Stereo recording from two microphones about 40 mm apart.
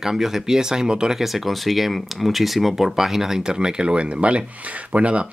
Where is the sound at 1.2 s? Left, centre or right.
Centre; by 5.3 s right.